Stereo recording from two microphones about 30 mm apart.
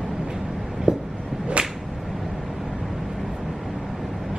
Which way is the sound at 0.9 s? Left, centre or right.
Right.